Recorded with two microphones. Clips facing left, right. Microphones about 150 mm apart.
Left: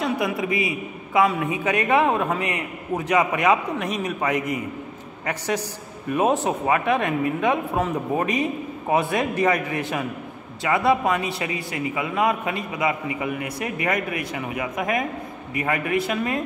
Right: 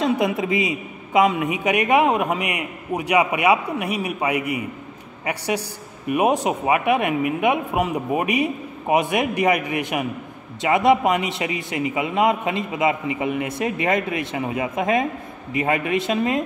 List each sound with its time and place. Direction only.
0.0 s a man's voice: 25° right (ahead or behind)